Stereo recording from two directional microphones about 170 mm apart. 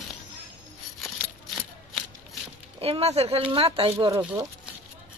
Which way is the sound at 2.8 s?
35° right (ahead or behind).